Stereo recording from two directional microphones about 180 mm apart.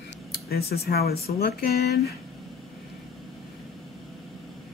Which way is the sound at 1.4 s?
55° left (ahead or behind).